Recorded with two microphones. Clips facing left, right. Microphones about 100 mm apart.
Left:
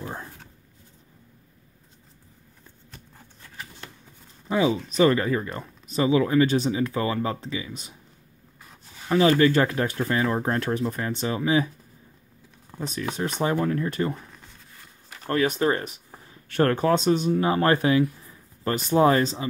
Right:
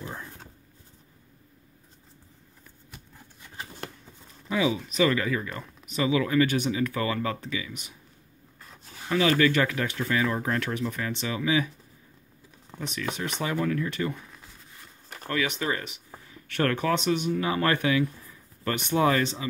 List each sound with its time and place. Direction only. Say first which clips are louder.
0.0 s a sound: left 3 dB; 30° left (ahead or behind)
4.5 s speech: left 3 dB; 35° left (ahead or behind)
9.1 s speech: left 4 dB; 30° left (ahead or behind)
12.7 s a sound: left 3 dB; 5° right (ahead or behind)
13.1 s speech: left 6 dB; 35° left (ahead or behind)
15.2 s speech: left 6 dB; 40° left (ahead or behind)